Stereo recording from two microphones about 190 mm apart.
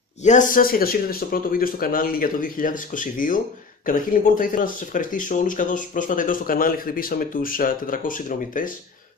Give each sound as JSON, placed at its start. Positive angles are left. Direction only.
{"t": 0.2, "sound": "speech", "side_deg": 40}